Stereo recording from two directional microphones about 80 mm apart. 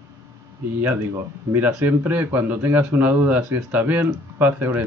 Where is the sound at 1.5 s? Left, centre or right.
Right.